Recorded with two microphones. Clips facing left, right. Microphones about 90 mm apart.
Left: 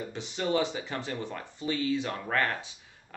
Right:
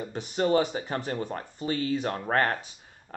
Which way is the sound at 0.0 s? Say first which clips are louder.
Right 5 dB; 40° right (ahead or behind).